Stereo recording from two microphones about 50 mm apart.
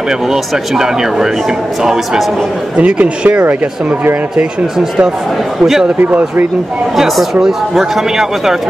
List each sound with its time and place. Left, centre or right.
0.3 s speech: centre
2.8 s speech: right
4.7 s speech: centre
7.4 s speech: centre